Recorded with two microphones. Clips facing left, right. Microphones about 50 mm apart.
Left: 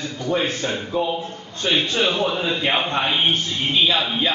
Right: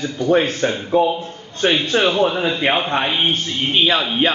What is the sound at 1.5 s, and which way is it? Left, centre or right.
Speech, right.